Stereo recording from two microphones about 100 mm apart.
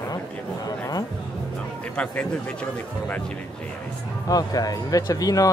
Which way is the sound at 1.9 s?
10° left (ahead or behind).